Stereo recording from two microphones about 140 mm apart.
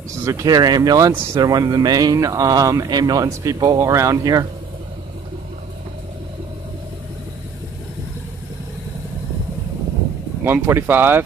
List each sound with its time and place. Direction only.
0.1 s speech: 20° right (ahead or behind)
10.4 s speech: 15° right (ahead or behind)